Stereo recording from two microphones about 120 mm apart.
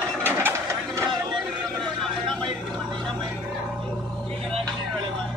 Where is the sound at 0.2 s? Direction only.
20° right (ahead or behind).